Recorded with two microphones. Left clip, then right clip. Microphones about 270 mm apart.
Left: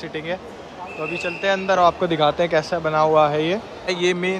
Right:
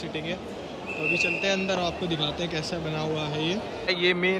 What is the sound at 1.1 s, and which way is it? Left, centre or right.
Speech, centre.